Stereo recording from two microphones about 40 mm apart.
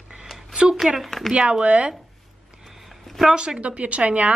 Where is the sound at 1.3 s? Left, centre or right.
Right.